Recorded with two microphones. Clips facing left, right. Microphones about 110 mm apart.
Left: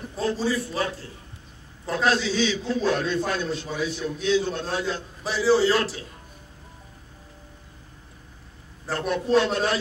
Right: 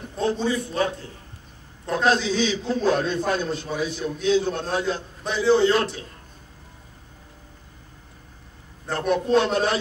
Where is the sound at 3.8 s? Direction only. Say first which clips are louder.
Right 2 dB; 35° right (ahead or behind).